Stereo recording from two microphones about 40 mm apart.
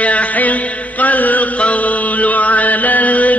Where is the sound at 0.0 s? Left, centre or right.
Left.